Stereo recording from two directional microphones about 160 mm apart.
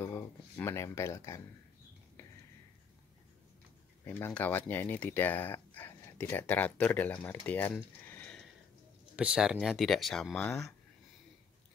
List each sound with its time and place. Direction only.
0.0 s a sound: 15° left (ahead or behind)
4.0 s speech: 10° left (ahead or behind)
9.1 s speech: 5° right (ahead or behind)